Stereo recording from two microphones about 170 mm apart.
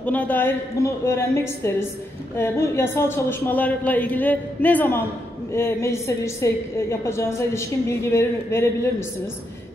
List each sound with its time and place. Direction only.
0.0 s a woman's voice: 10° left (ahead or behind)